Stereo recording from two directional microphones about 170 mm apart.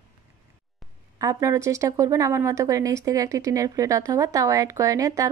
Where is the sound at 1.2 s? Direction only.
20° right (ahead or behind).